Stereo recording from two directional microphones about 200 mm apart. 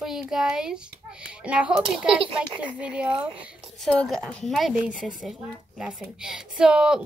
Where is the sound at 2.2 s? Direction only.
25° right (ahead or behind).